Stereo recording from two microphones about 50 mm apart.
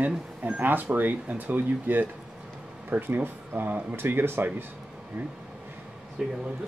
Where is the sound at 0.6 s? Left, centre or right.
Right.